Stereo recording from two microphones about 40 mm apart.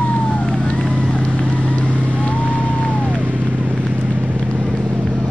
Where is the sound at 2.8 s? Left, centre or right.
Right.